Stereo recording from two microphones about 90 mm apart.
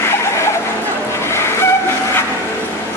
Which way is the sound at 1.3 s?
30° left (ahead or behind).